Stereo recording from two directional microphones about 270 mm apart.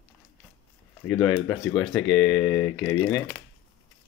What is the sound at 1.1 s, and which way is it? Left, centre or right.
Speech, centre.